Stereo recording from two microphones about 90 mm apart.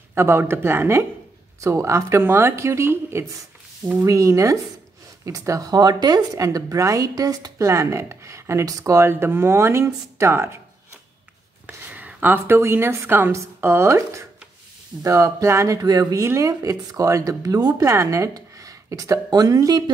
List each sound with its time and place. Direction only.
0.1 s a woman's voice: 30° right (ahead or behind)
11.6 s a woman's voice: 15° right (ahead or behind); by 19.8 s 40° right (ahead or behind)